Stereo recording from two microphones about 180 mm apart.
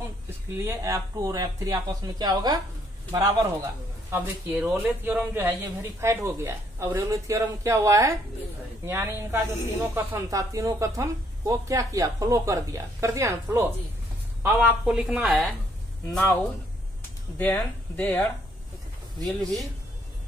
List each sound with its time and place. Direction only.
0.5 s a man's voice: 15° right (ahead or behind)
16.1 s speech: 10° left (ahead or behind)
17.4 s speech: 10° left (ahead or behind)